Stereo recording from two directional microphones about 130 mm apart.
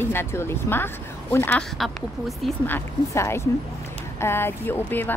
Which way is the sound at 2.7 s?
20° left (ahead or behind).